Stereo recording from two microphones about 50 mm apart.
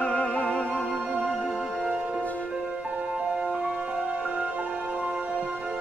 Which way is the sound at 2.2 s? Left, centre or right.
Left.